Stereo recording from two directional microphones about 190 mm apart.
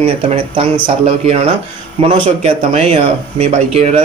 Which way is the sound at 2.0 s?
35° right (ahead or behind).